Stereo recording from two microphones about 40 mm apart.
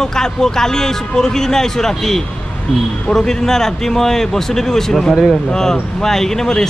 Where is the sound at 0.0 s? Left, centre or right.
Centre.